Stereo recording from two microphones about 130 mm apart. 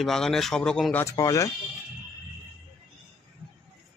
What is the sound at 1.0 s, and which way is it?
Speech, 25° left (ahead or behind).